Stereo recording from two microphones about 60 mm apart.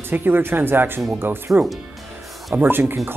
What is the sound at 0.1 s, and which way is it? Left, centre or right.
Speech, right.